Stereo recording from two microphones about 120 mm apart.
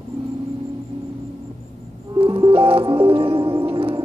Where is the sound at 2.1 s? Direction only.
45° right (ahead or behind).